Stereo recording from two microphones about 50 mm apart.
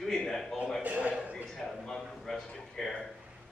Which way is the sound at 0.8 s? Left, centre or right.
Right.